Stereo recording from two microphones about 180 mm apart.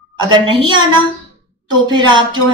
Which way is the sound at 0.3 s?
25° right (ahead or behind).